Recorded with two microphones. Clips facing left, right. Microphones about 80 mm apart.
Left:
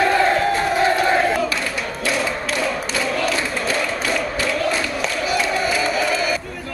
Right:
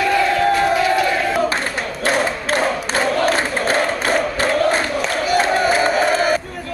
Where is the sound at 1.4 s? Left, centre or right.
Right.